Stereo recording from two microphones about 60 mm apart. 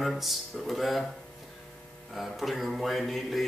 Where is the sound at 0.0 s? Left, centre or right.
Centre.